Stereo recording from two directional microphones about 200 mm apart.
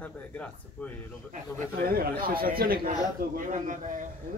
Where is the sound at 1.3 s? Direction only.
50° right (ahead or behind).